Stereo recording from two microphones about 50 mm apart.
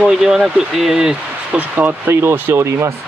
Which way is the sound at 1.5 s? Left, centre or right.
Right.